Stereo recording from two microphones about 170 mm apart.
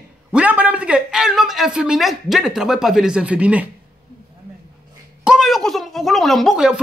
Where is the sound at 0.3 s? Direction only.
10° right (ahead or behind).